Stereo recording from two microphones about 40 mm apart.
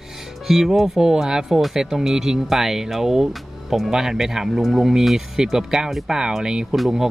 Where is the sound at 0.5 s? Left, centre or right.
Centre.